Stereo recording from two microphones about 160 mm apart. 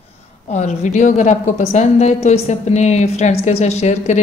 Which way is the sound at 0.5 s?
50° left (ahead or behind).